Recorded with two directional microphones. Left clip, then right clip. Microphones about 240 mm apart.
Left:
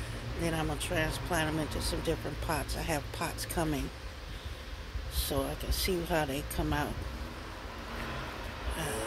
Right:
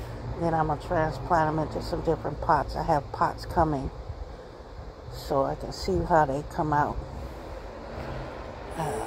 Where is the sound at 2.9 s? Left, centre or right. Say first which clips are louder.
Right 11 dB; centre.